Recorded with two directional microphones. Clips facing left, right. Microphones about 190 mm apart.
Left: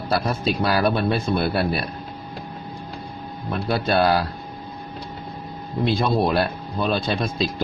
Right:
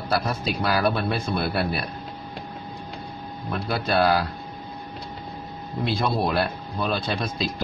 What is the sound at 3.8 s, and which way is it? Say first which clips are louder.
Speech: left 1 dB; 25° left (ahead or behind).